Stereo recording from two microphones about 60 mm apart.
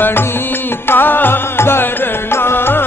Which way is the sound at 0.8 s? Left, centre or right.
Left.